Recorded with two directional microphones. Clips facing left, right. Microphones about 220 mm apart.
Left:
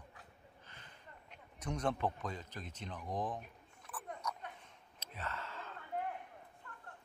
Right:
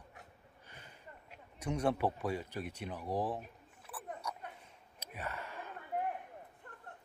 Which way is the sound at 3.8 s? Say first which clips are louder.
Right 1 dB; 10° right (ahead or behind).